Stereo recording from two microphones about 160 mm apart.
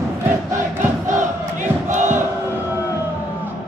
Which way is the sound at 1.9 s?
50° right (ahead or behind).